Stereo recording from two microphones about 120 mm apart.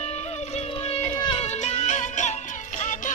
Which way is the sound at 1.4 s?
65° left (ahead or behind).